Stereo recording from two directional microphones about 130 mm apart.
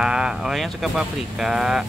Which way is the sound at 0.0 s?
5° right (ahead or behind).